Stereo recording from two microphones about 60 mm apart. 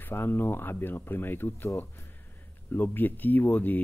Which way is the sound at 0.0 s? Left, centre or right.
Left.